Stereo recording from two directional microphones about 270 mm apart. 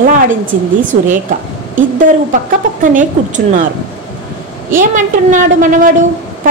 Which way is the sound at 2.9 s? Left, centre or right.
Right.